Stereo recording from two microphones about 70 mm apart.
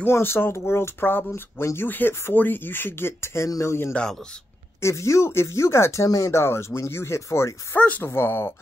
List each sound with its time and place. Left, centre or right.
0.0 s speech: left
1.9 s speech: left
3.4 s speech: left
3.9 s speech: centre
4.8 s speech: left
6.0 s speech: left
6.4 s speech: left
8.0 s speech: left